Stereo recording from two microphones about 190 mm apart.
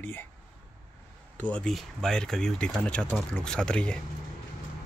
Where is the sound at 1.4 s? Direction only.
5° left (ahead or behind).